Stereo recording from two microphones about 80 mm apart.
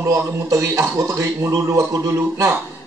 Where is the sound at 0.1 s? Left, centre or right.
Right.